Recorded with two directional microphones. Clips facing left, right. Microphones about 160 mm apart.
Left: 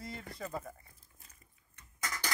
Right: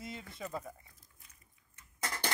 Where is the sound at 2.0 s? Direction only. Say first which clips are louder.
Right 2 dB; 30° right (ahead or behind).